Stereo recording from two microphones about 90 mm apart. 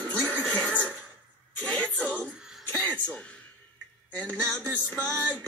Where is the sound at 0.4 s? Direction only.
Centre (ahead or behind).